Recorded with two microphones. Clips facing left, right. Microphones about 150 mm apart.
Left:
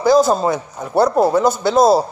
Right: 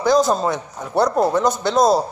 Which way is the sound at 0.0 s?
5° left (ahead or behind).